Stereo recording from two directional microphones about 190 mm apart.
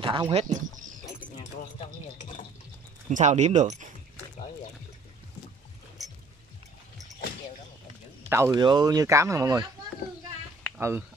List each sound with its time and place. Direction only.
0.0 s speech: 25° right (ahead or behind)
1.4 s a sound: 40° left (ahead or behind)
3.1 s speech: 40° right (ahead or behind)
8.3 s speech: 15° right (ahead or behind)
10.8 s speech: 15° right (ahead or behind)